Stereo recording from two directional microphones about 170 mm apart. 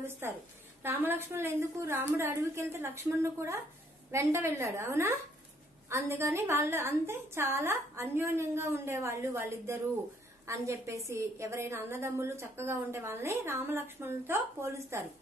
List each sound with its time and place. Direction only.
0.2 s a woman's voice: 15° right (ahead or behind)